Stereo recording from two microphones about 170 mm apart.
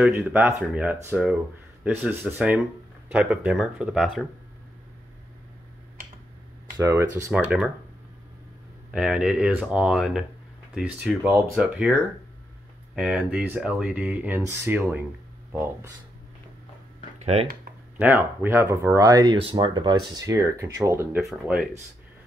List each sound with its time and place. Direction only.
0.0 s speech: 10° right (ahead or behind)
6.8 s speech: 15° right (ahead or behind)
8.9 s speech: 5° right (ahead or behind)
17.2 s speech: 40° right (ahead or behind)
17.9 s speech: 10° right (ahead or behind)
21.2 s speech: centre (ahead or behind)